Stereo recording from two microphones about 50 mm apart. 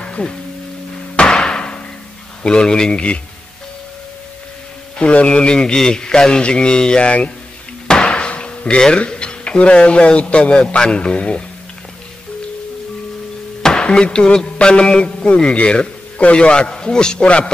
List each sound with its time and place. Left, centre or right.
0.0 s music: centre
1.1 s hammer: centre
2.4 s a man's voice: centre
4.9 s a man's voice: left
13.6 s speech: centre